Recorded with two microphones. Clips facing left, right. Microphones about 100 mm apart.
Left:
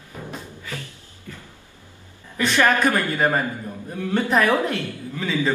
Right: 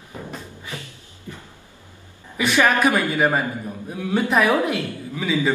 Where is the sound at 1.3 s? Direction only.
20° right (ahead or behind).